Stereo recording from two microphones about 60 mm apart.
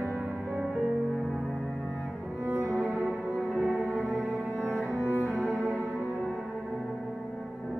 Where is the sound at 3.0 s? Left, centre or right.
Centre.